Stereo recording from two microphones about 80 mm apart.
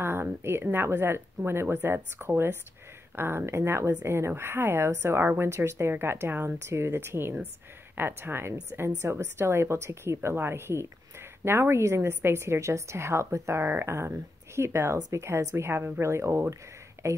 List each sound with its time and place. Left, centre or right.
0.0 s a woman's voice: right